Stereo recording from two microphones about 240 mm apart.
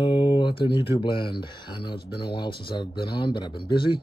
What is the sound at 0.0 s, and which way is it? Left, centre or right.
Speech, centre.